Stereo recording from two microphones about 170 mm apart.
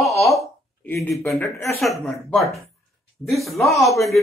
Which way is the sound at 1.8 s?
Centre (ahead or behind).